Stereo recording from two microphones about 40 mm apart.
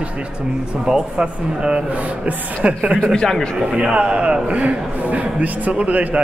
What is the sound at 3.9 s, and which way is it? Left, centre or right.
A man's voice, right.